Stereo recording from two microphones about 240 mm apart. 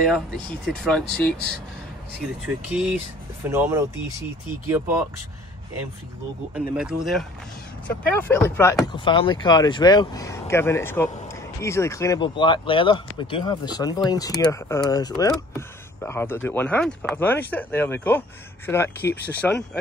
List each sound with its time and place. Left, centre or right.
0.0 s speech: centre
2.4 s speech: centre
6.5 s speech: centre